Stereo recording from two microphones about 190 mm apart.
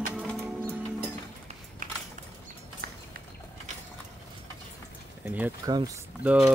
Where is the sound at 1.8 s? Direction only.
45° right (ahead or behind).